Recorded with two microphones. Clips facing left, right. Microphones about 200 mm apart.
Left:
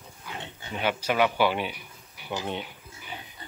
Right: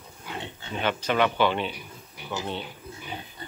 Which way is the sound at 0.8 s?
10° left (ahead or behind).